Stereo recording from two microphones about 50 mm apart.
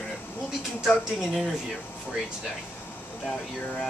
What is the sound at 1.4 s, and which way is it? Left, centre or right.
Speech, centre.